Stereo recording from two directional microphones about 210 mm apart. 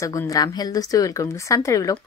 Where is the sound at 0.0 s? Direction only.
15° left (ahead or behind).